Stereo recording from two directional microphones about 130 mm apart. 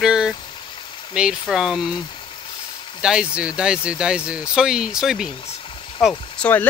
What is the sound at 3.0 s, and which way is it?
Speech, 5° right (ahead or behind).